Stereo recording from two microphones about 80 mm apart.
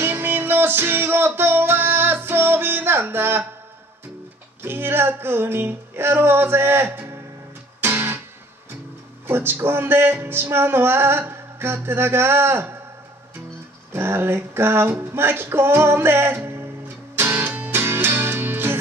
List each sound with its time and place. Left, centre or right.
0.0 s music: right
4.6 s music: right
9.3 s music: right
13.9 s a sound: right